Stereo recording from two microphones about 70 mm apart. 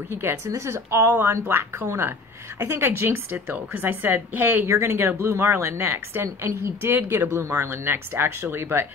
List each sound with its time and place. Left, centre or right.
0.2 s a woman's voice: right
1.4 s a woman's voice: right
4.6 s speech: right